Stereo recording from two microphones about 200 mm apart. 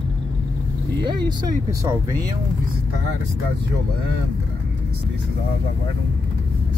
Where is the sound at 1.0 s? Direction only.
20° right (ahead or behind).